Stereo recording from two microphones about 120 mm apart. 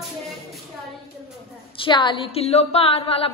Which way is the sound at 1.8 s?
40° left (ahead or behind).